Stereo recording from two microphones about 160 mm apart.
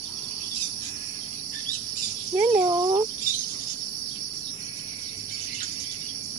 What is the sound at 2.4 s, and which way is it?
Cricket, 15° right (ahead or behind).